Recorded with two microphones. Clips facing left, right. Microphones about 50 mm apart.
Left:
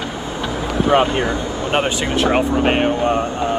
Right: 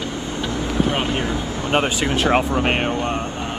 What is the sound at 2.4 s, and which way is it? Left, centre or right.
Speech, centre.